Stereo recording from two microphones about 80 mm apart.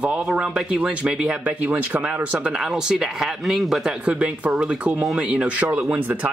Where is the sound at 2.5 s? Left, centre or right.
Centre.